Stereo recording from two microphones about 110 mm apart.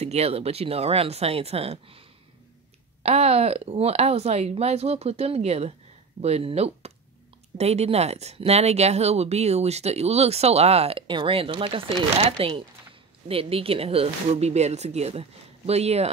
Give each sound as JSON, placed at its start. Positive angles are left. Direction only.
{"t": 0.0, "sound": "speech", "side_deg": -70}